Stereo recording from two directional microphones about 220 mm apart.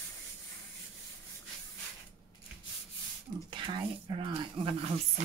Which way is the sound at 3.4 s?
20° right (ahead or behind).